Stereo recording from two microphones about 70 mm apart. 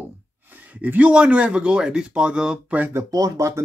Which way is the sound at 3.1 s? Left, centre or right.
Right.